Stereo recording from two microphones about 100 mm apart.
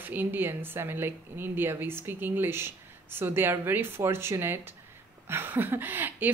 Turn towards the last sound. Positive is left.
turn(degrees=-20)  # may be behind; listen again after turning